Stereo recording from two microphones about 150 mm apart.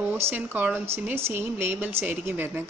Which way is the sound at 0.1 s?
10° right (ahead or behind).